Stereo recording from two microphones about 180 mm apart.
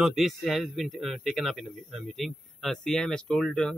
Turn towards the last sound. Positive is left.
turn(degrees=5)  # may be behind; listen again after turning